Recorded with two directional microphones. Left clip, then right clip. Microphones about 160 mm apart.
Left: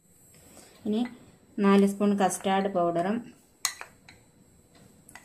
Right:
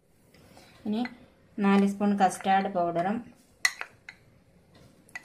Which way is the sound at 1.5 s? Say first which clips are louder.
Left 3 dB; 20° left (ahead or behind).